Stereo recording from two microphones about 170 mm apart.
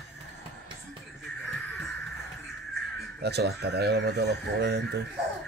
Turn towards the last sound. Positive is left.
turn(degrees=-80)